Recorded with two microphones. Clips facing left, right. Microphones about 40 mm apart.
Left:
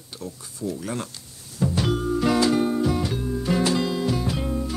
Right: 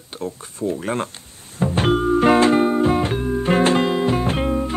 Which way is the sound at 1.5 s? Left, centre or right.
Right.